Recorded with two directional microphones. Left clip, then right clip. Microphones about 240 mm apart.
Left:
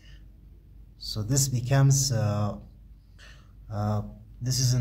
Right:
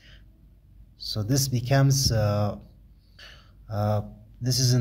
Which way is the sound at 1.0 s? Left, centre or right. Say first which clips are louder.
Right 2 dB; centre.